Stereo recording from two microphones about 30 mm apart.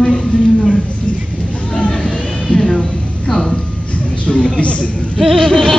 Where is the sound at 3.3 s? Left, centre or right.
Centre.